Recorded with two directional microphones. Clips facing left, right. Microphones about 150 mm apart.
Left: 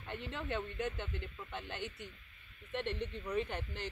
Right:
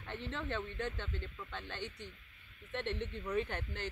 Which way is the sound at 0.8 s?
15° left (ahead or behind).